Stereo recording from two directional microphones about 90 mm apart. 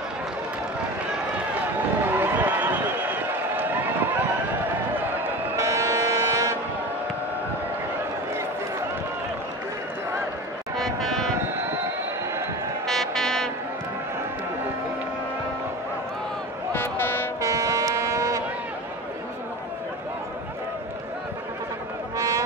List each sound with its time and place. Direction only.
2.1 s run: 20° right (ahead or behind)
5.6 s vehicle: 35° right (ahead or behind)
10.8 s vehicle: centre (ahead or behind)
11.3 s a sound: 30° right (ahead or behind)
12.8 s music: 5° left (ahead or behind)
16.7 s a sound: 25° left (ahead or behind)
17.4 s vehicle: 40° right (ahead or behind)
22.1 s run: 40° right (ahead or behind)